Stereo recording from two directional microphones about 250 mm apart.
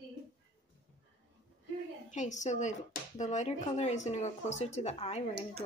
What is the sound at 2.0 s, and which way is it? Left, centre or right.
Speech, left.